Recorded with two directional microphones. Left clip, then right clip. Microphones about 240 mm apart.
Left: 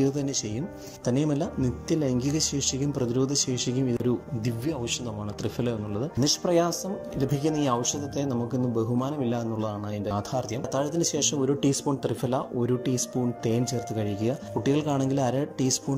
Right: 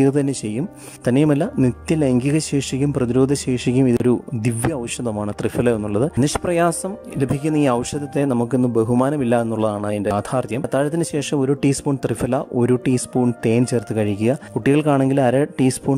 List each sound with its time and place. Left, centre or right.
1.0 s a man's voice: right
5.4 s a man's voice: right